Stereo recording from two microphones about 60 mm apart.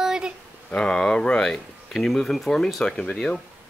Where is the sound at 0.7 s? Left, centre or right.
Centre.